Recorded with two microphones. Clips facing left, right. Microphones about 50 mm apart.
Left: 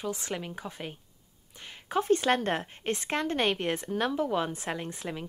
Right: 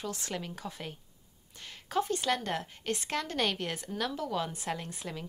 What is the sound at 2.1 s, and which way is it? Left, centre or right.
A woman's voice, left.